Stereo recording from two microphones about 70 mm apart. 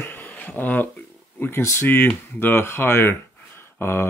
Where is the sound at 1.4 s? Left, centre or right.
Left.